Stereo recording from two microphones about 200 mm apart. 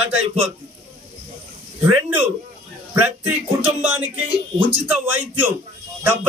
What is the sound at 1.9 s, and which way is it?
Speech, 10° right (ahead or behind).